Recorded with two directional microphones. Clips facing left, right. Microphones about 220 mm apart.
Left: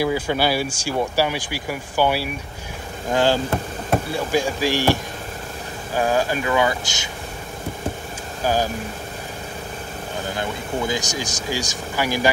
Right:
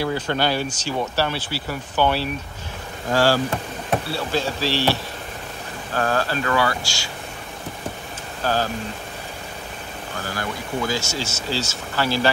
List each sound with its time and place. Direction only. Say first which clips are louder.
0.0 s speech: left 2 dB; 10° left (ahead or behind)
5.9 s speech: left 2 dB; 15° left (ahead or behind)
8.4 s speech: left 2 dB; 15° left (ahead or behind)
10.2 s speech: left 1 dB; 20° left (ahead or behind)